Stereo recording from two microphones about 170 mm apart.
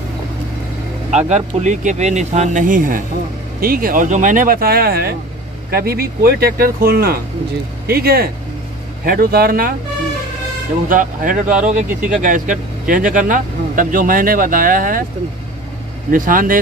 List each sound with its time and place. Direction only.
1.1 s speech: 45° right (ahead or behind); by 9.8 s 60° right (ahead or behind)
10.9 s speech: 55° right (ahead or behind)
16.1 s speech: 55° right (ahead or behind)